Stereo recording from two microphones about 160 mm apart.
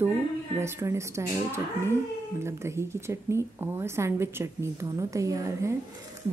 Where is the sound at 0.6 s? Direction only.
15° right (ahead or behind).